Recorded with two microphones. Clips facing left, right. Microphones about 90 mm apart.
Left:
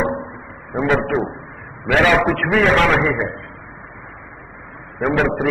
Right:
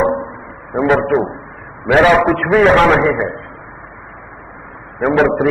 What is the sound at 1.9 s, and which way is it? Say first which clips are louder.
A man's voice: right 5 dB; 25° right (ahead or behind).